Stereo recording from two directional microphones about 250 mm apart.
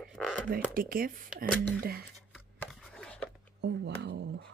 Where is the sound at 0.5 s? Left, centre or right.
Right.